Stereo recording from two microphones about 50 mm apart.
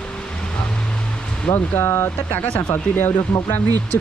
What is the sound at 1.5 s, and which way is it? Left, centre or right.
Speech, left.